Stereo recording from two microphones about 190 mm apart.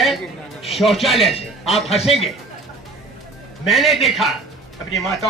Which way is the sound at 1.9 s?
30° left (ahead or behind).